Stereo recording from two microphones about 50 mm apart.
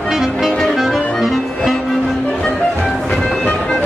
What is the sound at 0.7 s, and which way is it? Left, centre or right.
Music, centre.